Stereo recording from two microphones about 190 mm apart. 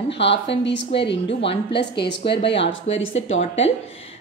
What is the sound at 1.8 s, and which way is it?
Speech, 65° left (ahead or behind).